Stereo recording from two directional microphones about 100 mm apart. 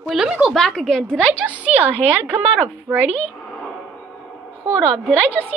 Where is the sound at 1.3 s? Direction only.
15° right (ahead or behind).